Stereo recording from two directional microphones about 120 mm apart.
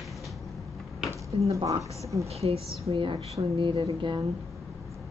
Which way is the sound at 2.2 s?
55° right (ahead or behind).